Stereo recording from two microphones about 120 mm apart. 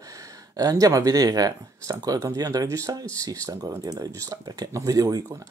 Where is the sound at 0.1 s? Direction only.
30° right (ahead or behind).